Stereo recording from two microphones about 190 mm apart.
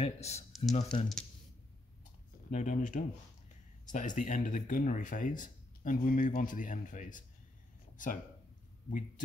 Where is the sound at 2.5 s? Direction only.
40° left (ahead or behind).